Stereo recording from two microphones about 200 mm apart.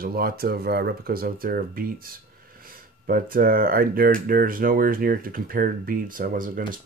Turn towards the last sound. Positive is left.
turn(degrees=-45)  # may be behind; listen again after turning